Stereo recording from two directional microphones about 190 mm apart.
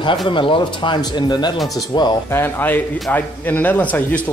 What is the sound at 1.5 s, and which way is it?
Speech, centre (ahead or behind).